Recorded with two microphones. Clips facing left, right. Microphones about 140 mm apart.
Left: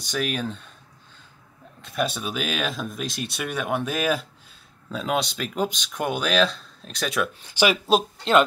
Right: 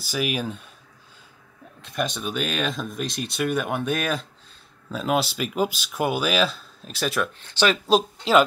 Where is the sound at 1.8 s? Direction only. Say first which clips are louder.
Left 1 dB; centre (ahead or behind).